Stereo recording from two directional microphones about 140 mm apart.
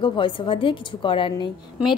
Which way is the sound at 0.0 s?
35° left (ahead or behind).